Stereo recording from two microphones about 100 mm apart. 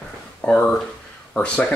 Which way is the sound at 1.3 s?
10° left (ahead or behind).